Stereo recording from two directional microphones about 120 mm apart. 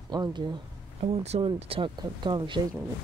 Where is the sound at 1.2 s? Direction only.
60° right (ahead or behind).